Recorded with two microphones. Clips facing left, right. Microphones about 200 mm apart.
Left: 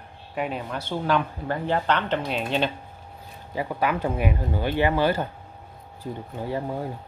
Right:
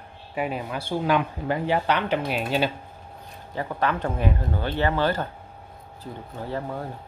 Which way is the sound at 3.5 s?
10° left (ahead or behind).